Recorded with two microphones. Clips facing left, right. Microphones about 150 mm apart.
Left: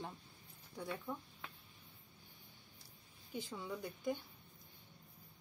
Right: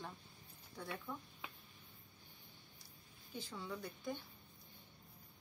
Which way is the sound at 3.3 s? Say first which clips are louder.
Left 2 dB; 15° left (ahead or behind).